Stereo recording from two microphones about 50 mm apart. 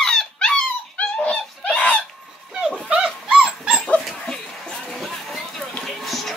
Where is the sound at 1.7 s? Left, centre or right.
Left.